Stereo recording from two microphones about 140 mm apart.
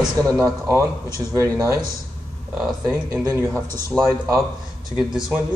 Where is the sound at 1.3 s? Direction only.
25° right (ahead or behind).